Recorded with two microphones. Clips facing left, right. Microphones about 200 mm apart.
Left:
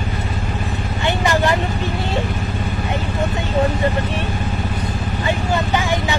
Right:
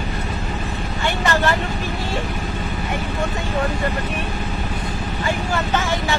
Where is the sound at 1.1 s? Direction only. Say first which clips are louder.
Left 2 dB; 15° left (ahead or behind).